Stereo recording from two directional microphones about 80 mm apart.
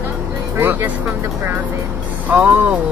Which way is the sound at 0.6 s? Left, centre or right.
Right.